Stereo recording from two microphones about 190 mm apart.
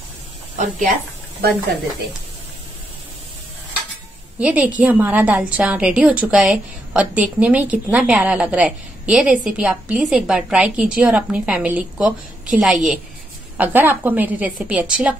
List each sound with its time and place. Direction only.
0.6 s speech: 45° right (ahead or behind)
4.4 s a woman's voice: 5° right (ahead or behind)